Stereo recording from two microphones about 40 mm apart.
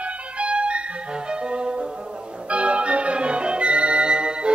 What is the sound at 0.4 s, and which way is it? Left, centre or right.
Ice cream truck, right.